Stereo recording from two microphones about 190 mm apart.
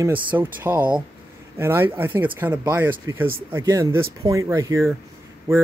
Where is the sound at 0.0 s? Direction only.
10° right (ahead or behind).